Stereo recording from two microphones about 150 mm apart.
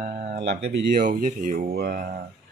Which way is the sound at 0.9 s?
60° right (ahead or behind).